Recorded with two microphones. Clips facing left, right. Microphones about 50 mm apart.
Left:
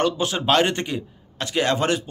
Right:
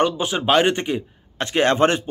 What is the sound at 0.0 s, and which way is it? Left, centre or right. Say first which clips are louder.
A man's voice: right 2 dB; centre.